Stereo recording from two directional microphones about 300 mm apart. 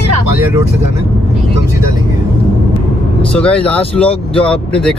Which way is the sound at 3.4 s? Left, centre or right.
Centre.